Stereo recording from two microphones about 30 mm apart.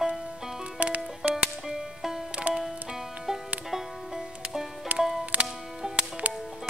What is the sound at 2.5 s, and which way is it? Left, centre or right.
Music, right.